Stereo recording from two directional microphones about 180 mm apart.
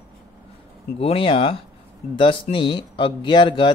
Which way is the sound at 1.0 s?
30° left (ahead or behind).